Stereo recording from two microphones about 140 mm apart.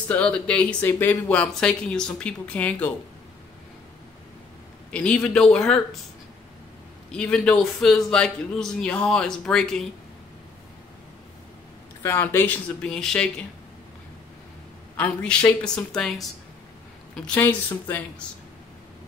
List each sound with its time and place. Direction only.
0.1 s speech: 10° left (ahead or behind)
4.9 s a man's voice: 10° left (ahead or behind)
7.1 s a man's voice: 5° left (ahead or behind)
12.0 s speech: 15° left (ahead or behind)
12.8 s a man's voice: 5° left (ahead or behind)
15.6 s a man's voice: 5° left (ahead or behind)